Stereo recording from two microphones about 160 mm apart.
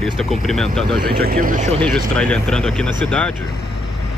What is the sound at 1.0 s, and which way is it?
Speech, 70° right (ahead or behind).